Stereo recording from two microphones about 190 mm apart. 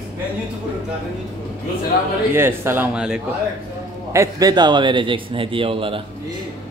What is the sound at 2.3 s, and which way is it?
Speech, 10° right (ahead or behind).